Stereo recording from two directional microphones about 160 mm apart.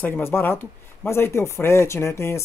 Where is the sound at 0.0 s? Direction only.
15° left (ahead or behind).